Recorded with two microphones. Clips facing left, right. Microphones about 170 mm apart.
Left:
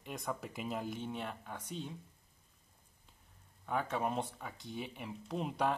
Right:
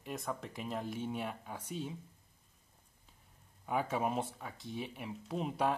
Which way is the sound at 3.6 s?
10° right (ahead or behind).